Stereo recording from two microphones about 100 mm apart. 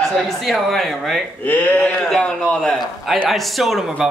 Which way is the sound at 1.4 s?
15° left (ahead or behind).